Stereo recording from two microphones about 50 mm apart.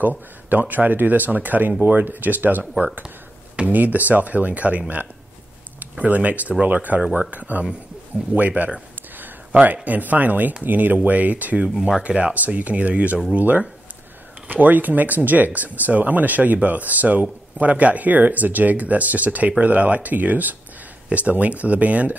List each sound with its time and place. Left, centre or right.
0.5 s speech: right
9.1 s a sound: right
9.8 s speech: right
12.0 s speech: right